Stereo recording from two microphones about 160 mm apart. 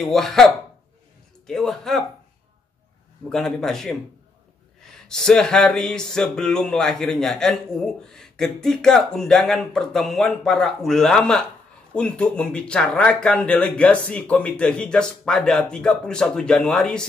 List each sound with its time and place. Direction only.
0.1 s speech: centre (ahead or behind)
1.5 s speech: centre (ahead or behind)
3.3 s speech: centre (ahead or behind)
5.0 s speech: 5° left (ahead or behind)